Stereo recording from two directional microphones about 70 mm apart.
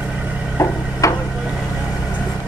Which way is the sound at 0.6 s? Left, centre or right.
Left.